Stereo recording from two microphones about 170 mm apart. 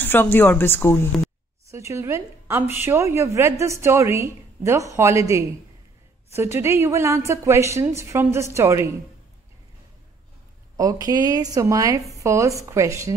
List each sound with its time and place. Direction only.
0.0 s speech: 10° left (ahead or behind)
1.7 s a woman's voice: 15° right (ahead or behind)
6.3 s a woman's voice: 15° right (ahead or behind)
10.8 s a woman's voice: 20° right (ahead or behind)